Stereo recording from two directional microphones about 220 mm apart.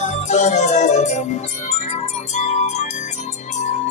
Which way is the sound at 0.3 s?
30° left (ahead or behind).